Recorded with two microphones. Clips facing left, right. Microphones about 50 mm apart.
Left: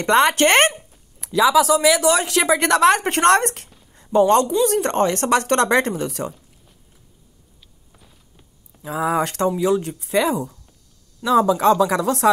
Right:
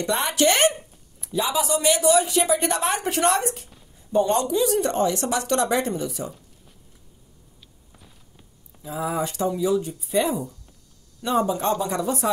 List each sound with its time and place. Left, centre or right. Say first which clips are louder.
0.0 s speech: left 9 dB; left
0.4 s speech: left 4 dB; left
1.2 s speech: left 9 dB; left
3.0 s speech: left 6 dB; left
3.9 s a sound: left 6 dB; left
4.8 s speech: left 4 dB; left
7.9 s walk: left 1 dB; centre
8.8 s speech: left 6 dB; left